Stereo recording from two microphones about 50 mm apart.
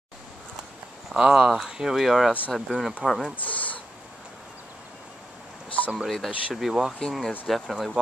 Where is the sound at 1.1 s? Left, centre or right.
Centre.